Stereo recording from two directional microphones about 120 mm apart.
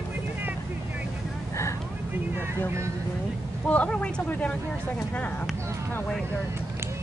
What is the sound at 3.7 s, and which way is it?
Speech, 10° left (ahead or behind).